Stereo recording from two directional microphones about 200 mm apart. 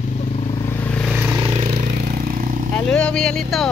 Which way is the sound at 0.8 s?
5° left (ahead or behind).